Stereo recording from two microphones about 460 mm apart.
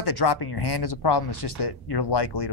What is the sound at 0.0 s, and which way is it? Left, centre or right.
Speech, left.